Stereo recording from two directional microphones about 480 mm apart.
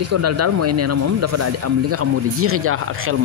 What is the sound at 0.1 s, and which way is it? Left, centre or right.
Speech, right.